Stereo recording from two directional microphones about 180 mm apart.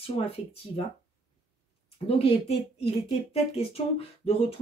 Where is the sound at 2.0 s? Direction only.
30° left (ahead or behind).